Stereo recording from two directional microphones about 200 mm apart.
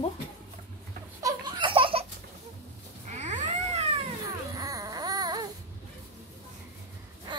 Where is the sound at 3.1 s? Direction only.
35° right (ahead or behind).